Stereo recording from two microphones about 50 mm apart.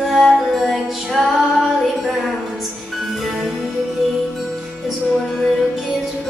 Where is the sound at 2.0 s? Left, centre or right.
Centre.